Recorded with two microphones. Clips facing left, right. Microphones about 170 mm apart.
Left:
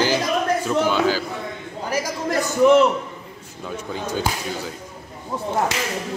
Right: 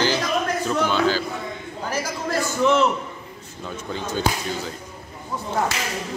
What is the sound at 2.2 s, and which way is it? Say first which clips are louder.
Speech: left 5 dB; 15° left (ahead or behind).